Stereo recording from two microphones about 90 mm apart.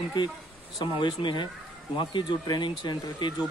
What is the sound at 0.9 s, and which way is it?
A man's voice, 55° left (ahead or behind).